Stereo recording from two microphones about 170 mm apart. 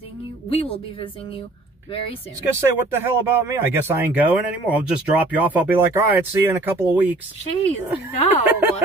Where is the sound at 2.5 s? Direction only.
15° right (ahead or behind).